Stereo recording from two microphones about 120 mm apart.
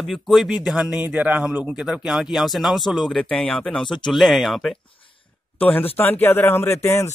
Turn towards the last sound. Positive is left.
turn(degrees=20)  # may be behind; listen again after turning